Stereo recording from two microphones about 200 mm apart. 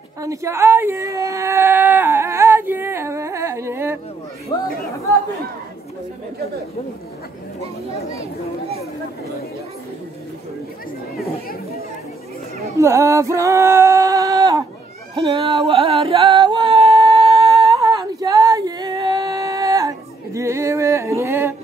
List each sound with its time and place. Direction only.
0.2 s a sound: 15° right (ahead or behind)
4.5 s speech: 20° left (ahead or behind)
12.7 s singing: 15° right (ahead or behind)
15.1 s music: 25° right (ahead or behind)
17.7 s female singing: 20° right (ahead or behind)